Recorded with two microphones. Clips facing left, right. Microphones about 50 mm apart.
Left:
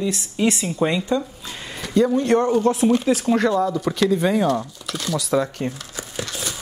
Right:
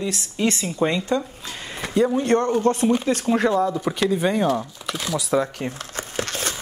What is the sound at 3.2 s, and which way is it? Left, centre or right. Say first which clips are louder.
Speech: left 1 dB; centre.